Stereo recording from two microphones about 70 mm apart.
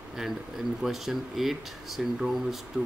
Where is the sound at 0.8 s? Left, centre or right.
Centre.